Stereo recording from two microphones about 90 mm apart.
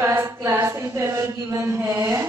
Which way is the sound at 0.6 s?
35° right (ahead or behind).